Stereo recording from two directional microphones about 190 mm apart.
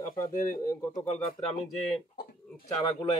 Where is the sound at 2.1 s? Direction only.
50° left (ahead or behind).